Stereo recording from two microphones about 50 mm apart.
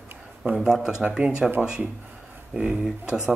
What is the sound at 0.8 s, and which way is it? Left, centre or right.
Speech, centre.